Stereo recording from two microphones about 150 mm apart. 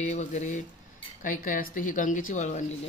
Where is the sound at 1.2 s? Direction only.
65° left (ahead or behind).